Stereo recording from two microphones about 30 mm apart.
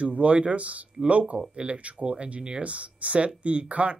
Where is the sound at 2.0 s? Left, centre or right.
Right.